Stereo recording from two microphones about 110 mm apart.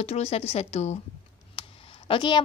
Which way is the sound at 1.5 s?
55° left (ahead or behind).